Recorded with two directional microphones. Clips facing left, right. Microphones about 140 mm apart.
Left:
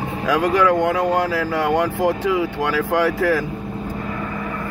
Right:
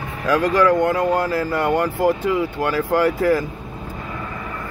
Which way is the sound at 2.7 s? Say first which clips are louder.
Right 1 dB; 90° left.